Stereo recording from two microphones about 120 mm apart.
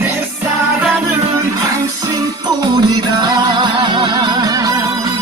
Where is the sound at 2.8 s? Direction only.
35° right (ahead or behind).